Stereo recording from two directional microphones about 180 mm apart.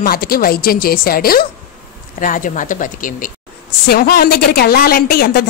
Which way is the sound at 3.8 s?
60° left (ahead or behind).